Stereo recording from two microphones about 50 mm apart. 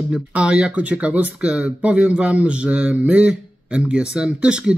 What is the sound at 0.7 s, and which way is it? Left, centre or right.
Speech, right.